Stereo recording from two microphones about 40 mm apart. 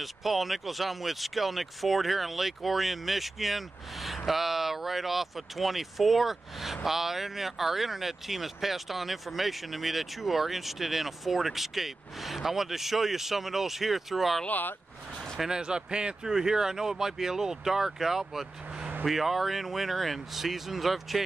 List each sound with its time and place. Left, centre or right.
0.0 s speech: centre
14.5 s speech: left
15.4 s speech: centre
16.3 s speech: centre